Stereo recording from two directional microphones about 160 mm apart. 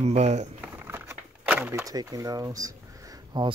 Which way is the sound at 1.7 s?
20° right (ahead or behind).